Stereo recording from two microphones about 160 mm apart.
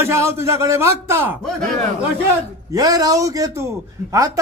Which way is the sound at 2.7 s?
25° right (ahead or behind).